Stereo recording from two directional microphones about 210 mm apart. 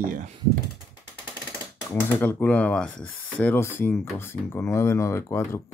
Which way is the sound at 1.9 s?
10° left (ahead or behind).